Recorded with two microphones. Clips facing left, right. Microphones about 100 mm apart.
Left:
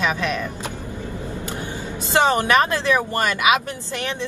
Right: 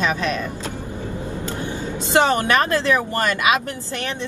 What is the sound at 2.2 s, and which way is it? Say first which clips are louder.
Speech: even; 25° left (ahead or behind).